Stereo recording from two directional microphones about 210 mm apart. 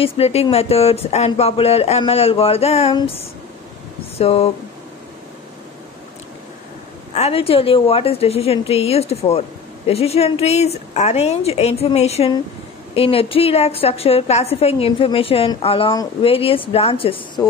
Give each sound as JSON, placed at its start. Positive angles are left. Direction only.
{"t": 0.0, "sound": "speech", "side_deg": 30}
{"t": 4.2, "sound": "speech", "side_deg": 30}
{"t": 7.2, "sound": "speech", "side_deg": 30}